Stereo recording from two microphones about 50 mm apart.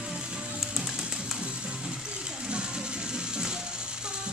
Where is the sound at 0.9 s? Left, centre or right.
Centre.